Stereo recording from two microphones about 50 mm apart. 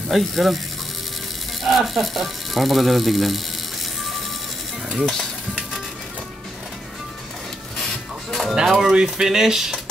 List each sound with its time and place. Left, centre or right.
0.1 s speech: centre
1.6 s speech: centre
4.9 s music: centre
8.3 s music: centre
8.6 s speech: centre